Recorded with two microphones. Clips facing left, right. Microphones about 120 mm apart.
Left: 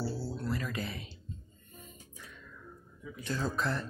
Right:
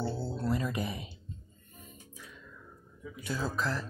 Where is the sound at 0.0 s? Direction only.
25° right (ahead or behind).